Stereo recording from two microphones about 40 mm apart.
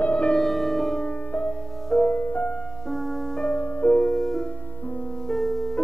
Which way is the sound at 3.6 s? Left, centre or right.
Left.